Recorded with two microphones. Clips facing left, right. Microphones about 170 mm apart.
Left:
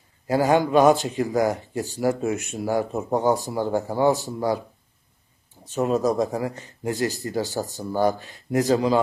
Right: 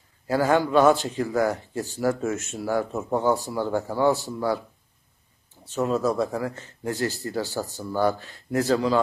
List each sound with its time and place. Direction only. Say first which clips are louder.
0.3 s speech: left 2 dB; 15° left (ahead or behind)
5.7 s speech: left 2 dB; 15° left (ahead or behind)